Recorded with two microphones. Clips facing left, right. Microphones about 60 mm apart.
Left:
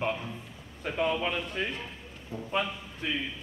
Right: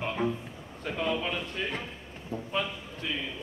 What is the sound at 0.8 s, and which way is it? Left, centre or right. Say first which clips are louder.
Speech: left 2 dB; centre.